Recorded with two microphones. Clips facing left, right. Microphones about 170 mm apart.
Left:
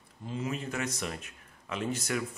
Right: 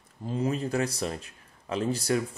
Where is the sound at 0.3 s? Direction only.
35° right (ahead or behind).